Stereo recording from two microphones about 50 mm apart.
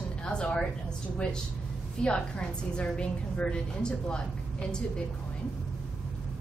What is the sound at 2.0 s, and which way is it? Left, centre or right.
A woman's voice, centre.